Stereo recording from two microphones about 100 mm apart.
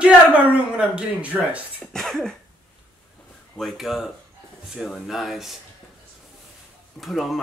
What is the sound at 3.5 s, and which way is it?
Speech, centre (ahead or behind).